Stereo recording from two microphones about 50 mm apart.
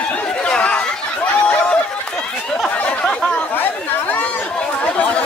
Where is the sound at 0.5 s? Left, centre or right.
Left.